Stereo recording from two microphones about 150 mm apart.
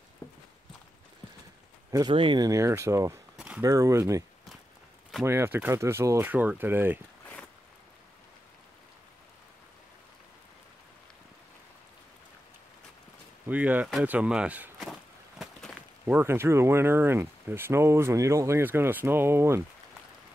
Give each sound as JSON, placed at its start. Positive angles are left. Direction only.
{"t": 0.2, "sound": "walk", "side_deg": 15}
{"t": 1.9, "sound": "speech", "side_deg": -25}
{"t": 3.3, "sound": "a sound", "side_deg": -5}
{"t": 3.6, "sound": "speech", "side_deg": -20}
{"t": 5.2, "sound": "speech", "side_deg": -15}
{"t": 13.5, "sound": "speech", "side_deg": -10}
{"t": 14.0, "sound": "walk", "side_deg": -10}
{"t": 16.2, "sound": "speech", "side_deg": -15}